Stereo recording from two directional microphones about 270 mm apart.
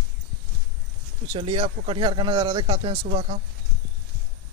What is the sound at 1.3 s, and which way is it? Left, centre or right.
Speech, centre.